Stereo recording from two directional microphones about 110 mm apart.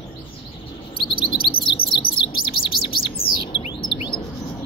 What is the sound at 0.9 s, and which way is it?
Chirp, 50° left (ahead or behind).